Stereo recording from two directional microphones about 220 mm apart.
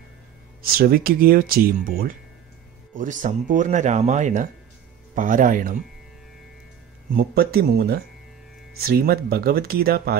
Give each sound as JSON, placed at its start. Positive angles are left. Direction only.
{"t": 0.6, "sound": "speech", "side_deg": -45}
{"t": 7.1, "sound": "speech", "side_deg": -45}